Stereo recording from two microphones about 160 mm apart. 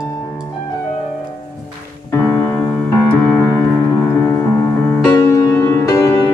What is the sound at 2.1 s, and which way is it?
Music, 15° left (ahead or behind).